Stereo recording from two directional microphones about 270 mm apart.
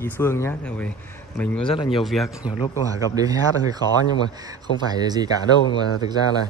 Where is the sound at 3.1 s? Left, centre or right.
Centre.